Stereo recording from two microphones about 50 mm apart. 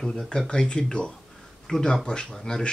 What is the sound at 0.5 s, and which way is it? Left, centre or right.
Speech, centre.